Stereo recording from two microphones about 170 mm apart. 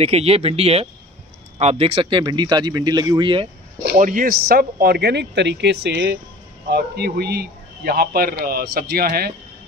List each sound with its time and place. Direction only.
0.0 s speech: 40° right (ahead or behind)
3.9 s speech: 50° right (ahead or behind); by 6.1 s 90° right
6.7 s a man's voice: 70° right (ahead or behind)